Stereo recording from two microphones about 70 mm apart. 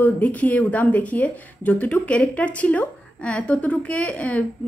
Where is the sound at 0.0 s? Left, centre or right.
Left.